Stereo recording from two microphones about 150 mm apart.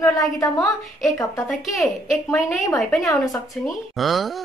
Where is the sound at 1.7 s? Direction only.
Centre (ahead or behind).